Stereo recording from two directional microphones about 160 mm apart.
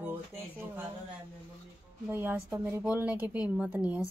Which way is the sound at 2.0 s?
15° right (ahead or behind).